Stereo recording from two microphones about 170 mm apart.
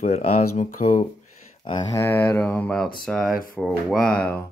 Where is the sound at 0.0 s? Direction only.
40° left (ahead or behind).